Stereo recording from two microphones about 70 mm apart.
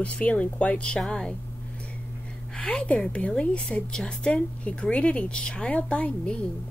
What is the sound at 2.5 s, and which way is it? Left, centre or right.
A woman's voice, centre.